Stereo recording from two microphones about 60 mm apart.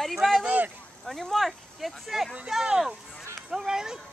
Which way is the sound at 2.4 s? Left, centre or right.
Centre.